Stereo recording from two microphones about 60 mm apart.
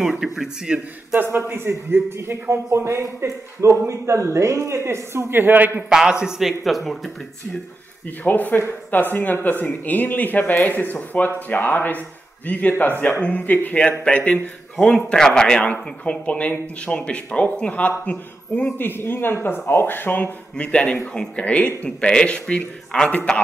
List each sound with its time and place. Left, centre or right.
0.0 s speech: centre
1.1 s a man's voice: right
5.9 s speech: centre
8.2 s speech: left
14.8 s speech: centre
15.6 s speech: left
18.6 s speech: left
20.5 s speech: centre